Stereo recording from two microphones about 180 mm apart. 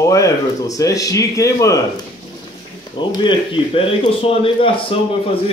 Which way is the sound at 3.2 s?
25° left (ahead or behind).